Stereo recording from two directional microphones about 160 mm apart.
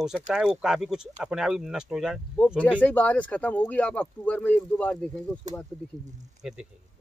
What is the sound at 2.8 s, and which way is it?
Speech, 10° left (ahead or behind).